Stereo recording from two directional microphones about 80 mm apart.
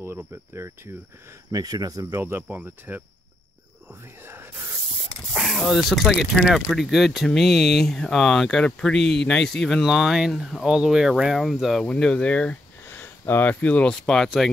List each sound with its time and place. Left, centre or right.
1.5 s speech: right
2.0 s speech: right
5.4 s speech: centre
11.8 s speech: centre
14.0 s speech: centre